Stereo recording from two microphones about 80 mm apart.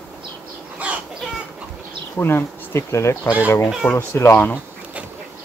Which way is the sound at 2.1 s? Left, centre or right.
Left.